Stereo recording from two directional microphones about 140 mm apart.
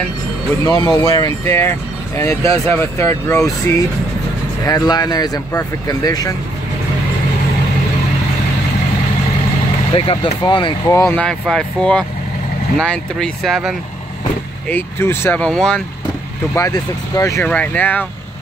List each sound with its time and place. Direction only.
0.7 s speech: 25° left (ahead or behind)
9.9 s speech: 40° left (ahead or behind)
10.9 s speech: 20° left (ahead or behind)
11.1 s speech: 5° left (ahead or behind)
14.7 s speech: 15° left (ahead or behind)
16.5 s speech: 25° left (ahead or behind)
17.4 s speech: 10° left (ahead or behind)